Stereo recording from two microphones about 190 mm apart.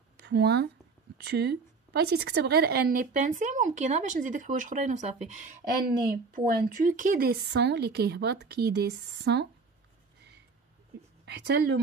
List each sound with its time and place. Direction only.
0.2 s a woman's voice: 60° right (ahead or behind)
11.2 s a woman's voice: 60° right (ahead or behind)